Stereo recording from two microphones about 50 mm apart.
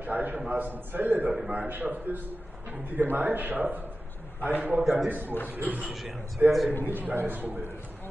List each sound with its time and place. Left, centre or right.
0.0 s a man's voice: right
5.9 s a man's voice: centre
6.7 s a man's voice: left
7.2 s a man's voice: right